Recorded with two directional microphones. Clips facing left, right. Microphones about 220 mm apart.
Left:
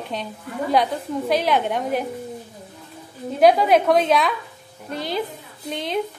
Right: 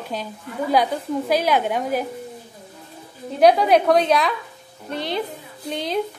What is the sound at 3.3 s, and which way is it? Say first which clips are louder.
A woman's voice: even; centre (ahead or behind).